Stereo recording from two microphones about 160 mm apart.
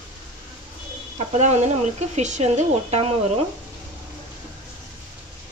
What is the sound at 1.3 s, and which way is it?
A woman's voice, 45° right (ahead or behind).